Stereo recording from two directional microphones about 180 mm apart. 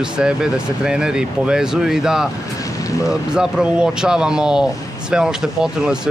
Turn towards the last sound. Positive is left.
turn(degrees=-5)  # may be behind; listen again after turning